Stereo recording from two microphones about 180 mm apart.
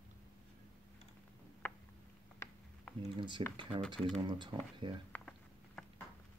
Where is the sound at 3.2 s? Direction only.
25° right (ahead or behind).